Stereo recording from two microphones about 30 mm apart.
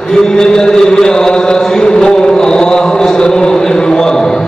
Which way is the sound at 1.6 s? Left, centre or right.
Left.